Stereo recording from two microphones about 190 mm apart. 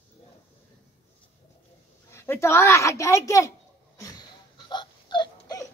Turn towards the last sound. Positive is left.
turn(degrees=20)  # may be behind; listen again after turning